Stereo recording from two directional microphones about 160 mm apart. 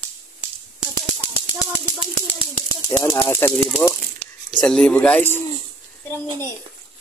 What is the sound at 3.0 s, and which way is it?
Speech, 15° left (ahead or behind).